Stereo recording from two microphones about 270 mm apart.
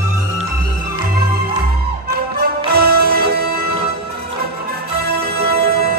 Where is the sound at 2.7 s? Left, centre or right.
Right.